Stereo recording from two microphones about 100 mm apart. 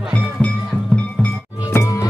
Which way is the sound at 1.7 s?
30° left (ahead or behind).